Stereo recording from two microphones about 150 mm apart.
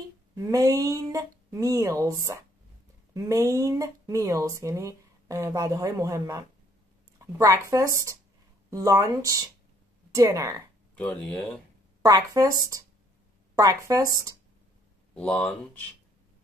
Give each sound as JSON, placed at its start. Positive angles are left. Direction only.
{"t": 0.4, "sound": "speech", "side_deg": -25}
{"t": 11.0, "sound": "speech", "side_deg": 5}
{"t": 12.0, "sound": "speech", "side_deg": -25}
{"t": 15.1, "sound": "speech", "side_deg": 10}